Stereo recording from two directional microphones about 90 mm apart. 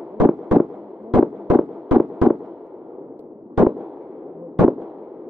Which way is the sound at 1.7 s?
5° right (ahead or behind).